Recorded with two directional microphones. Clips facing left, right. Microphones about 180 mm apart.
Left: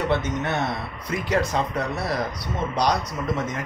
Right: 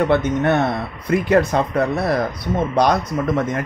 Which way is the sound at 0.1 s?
55° right (ahead or behind).